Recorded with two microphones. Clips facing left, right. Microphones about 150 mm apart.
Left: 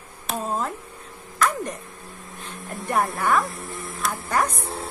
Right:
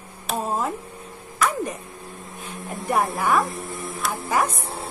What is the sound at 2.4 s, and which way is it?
Speech, 5° right (ahead or behind).